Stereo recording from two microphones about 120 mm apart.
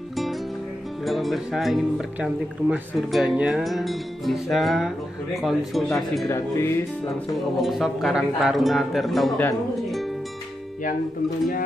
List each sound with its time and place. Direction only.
1.0 s speech: centre (ahead or behind)
6.2 s speech: 25° left (ahead or behind)
7.6 s speech: centre (ahead or behind)